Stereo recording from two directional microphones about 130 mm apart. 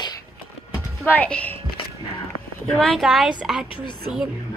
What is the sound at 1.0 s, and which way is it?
Speech, 10° left (ahead or behind).